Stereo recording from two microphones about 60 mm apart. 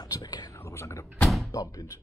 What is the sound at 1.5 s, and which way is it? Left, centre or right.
Speech, left.